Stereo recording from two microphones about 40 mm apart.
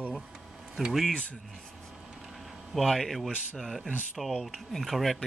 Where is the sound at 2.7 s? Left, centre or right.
Centre.